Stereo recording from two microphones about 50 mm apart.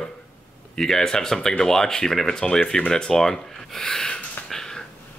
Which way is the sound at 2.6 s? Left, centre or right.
Left.